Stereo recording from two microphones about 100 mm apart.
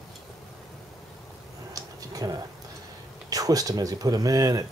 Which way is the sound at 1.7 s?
35° right (ahead or behind).